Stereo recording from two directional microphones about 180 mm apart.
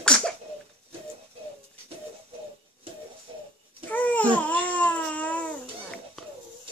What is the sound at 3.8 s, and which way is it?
Babbling, 10° left (ahead or behind).